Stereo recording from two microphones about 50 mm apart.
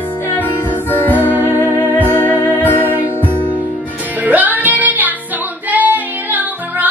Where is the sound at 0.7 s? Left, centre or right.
Left.